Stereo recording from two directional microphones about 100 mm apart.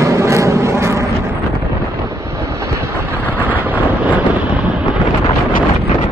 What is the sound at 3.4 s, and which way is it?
Vehicle, 15° right (ahead or behind).